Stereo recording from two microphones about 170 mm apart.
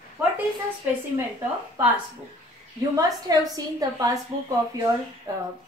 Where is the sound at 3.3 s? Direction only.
20° right (ahead or behind).